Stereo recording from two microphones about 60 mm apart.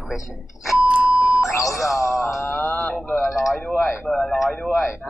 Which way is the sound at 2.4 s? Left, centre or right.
Left.